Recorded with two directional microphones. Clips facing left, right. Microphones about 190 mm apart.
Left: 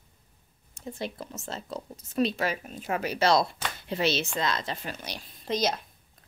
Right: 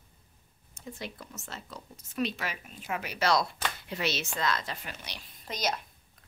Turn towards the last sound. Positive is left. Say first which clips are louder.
# left 6 dB
turn(degrees=30)  # may be behind; listen again after turning